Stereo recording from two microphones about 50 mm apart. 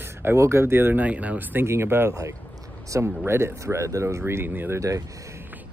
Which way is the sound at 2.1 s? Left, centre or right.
Right.